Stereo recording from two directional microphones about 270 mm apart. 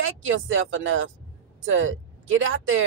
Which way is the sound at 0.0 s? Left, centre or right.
Right.